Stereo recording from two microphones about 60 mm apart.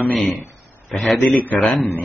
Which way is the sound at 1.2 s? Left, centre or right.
Left.